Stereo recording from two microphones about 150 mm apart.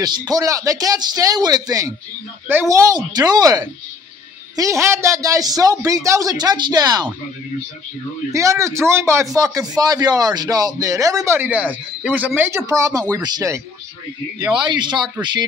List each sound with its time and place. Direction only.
0.3 s a man's voice: 25° right (ahead or behind)
8.3 s a man's voice: 20° right (ahead or behind)
14.5 s speech: 30° right (ahead or behind)